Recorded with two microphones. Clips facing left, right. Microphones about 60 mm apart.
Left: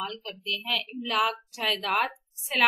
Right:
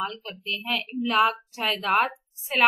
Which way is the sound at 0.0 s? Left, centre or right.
Right.